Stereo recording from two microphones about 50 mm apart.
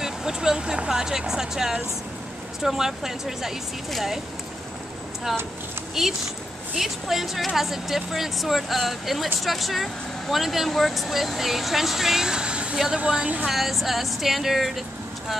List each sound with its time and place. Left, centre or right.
0.0 s speech: centre
6.0 s speech: centre
12.7 s speech: centre
13.5 s speech: centre